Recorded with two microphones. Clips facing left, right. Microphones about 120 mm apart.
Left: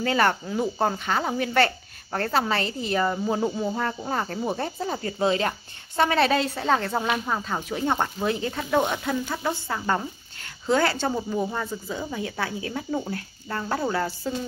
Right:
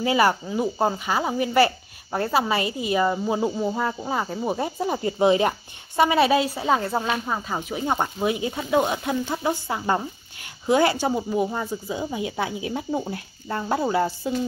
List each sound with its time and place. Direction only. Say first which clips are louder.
0.0 s a woman's voice: right 2 dB; 10° right (ahead or behind)